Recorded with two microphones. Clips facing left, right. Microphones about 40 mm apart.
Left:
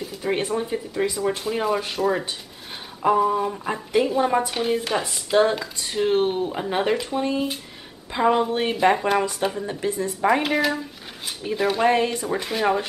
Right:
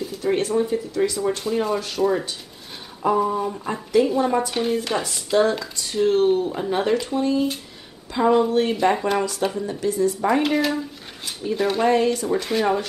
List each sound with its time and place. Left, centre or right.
0.2 s speech: centre
9.7 s speech: left
10.2 s speech: centre
11.9 s speech: left